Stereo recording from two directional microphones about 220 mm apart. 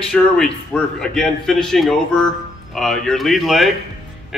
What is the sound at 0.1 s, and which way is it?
A man's voice, centre (ahead or behind).